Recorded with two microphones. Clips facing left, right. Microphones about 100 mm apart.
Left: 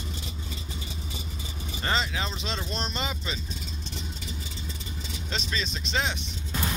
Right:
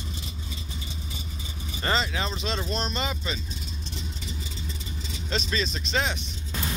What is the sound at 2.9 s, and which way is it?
Speech, 10° left (ahead or behind).